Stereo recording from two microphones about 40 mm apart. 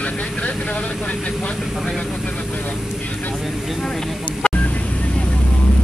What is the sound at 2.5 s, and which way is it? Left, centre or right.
Vehicle, left.